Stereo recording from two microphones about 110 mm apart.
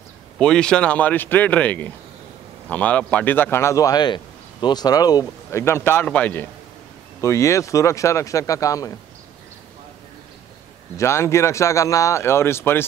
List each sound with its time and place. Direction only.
0.4 s a man's voice: 5° left (ahead or behind); by 5.2 s 35° left (ahead or behind)
5.2 s speech: 25° left (ahead or behind)
7.2 s speech: 25° left (ahead or behind)
11.0 s speech: 25° left (ahead or behind)